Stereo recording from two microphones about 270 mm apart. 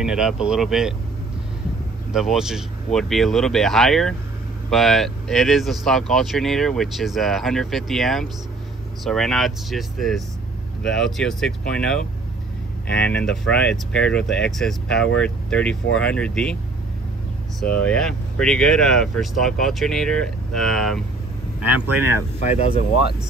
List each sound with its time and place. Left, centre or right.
0.0 s speech: centre
2.1 s speech: centre
17.6 s speech: centre
22.4 s speech: left